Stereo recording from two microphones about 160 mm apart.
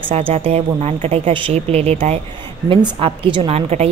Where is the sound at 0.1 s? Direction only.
40° right (ahead or behind).